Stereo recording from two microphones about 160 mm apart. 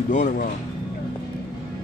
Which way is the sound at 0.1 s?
55° left (ahead or behind).